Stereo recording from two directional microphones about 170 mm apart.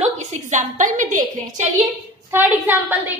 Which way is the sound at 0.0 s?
45° right (ahead or behind).